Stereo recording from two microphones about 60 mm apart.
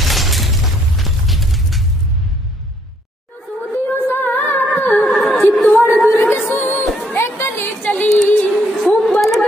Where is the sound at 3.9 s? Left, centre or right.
Left.